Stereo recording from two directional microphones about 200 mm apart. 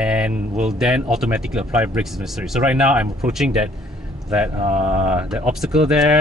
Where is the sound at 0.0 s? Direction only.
5° right (ahead or behind).